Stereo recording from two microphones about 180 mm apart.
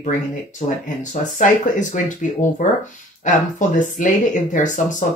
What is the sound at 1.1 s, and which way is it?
Speech, 45° left (ahead or behind).